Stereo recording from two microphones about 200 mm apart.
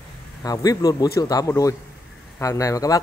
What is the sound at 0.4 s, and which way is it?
Speech, 20° left (ahead or behind).